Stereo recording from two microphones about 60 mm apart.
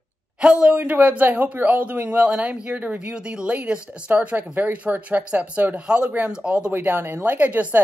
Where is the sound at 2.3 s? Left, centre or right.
Centre.